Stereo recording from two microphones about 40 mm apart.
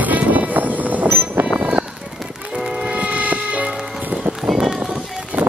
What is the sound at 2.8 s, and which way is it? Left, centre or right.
Music, right.